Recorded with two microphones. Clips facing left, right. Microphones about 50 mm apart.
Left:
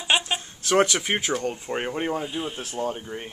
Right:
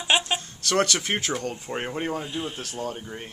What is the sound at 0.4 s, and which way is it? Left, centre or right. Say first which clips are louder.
Speech: left 3 dB; centre.